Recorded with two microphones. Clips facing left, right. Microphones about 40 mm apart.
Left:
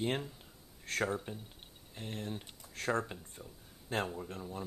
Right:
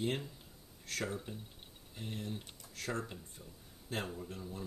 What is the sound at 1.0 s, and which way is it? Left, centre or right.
Speech, centre.